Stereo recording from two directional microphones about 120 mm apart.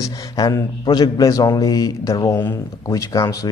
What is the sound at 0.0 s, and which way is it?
A man's voice, 35° left (ahead or behind).